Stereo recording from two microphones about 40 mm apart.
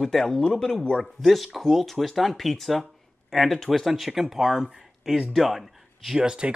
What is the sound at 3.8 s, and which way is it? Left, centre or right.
Speech, centre.